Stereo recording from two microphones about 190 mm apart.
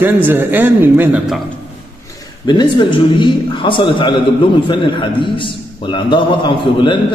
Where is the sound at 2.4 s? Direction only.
25° left (ahead or behind).